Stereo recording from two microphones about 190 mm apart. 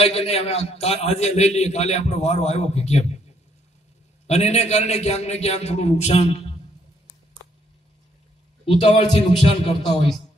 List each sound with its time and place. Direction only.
0.0 s a man's voice: 30° left (ahead or behind)
4.3 s a man's voice: 35° left (ahead or behind)
8.6 s a man's voice: 35° left (ahead or behind)